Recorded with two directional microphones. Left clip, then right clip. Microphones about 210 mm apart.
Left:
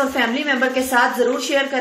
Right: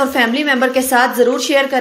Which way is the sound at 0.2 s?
40° right (ahead or behind).